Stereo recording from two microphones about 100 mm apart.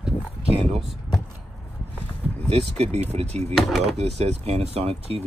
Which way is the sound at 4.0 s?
90° right.